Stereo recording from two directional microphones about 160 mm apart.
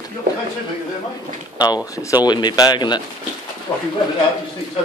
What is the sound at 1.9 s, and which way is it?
Speech, 25° left (ahead or behind).